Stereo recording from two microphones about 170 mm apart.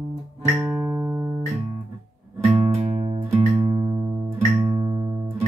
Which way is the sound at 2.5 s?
40° right (ahead or behind).